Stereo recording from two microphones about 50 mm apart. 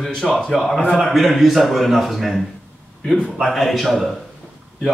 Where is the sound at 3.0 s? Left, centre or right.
Centre.